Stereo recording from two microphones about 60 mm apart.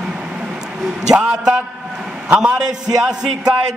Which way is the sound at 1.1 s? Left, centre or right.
Centre.